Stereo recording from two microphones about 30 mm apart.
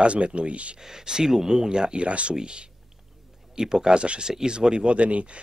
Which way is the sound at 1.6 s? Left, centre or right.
Right.